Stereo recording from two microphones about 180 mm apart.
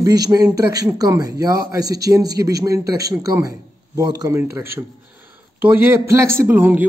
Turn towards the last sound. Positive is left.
turn(degrees=-10)  # may be behind; listen again after turning